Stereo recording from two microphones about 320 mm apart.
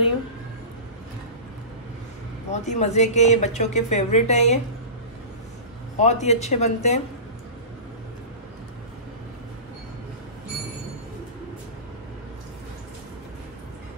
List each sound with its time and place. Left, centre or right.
2.5 s speech: left
5.9 s speech: left